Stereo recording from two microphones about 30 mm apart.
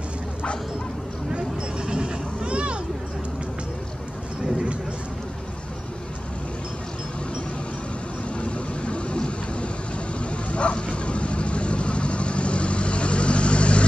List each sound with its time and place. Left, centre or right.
1.9 s vehicle: right
8.4 s vehicle: left
10.3 s vehicle: left